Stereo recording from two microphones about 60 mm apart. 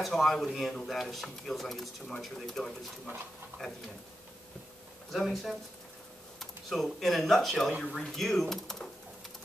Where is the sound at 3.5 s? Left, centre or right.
Right.